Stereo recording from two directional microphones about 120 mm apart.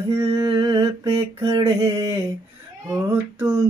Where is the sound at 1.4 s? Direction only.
30° right (ahead or behind).